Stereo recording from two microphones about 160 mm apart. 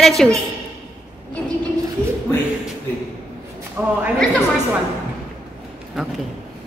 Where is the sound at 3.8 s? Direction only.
10° right (ahead or behind).